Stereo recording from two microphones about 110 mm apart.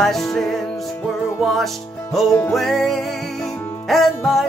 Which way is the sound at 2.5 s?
Centre (ahead or behind).